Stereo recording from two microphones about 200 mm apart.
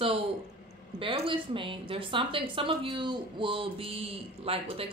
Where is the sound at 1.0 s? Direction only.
25° right (ahead or behind).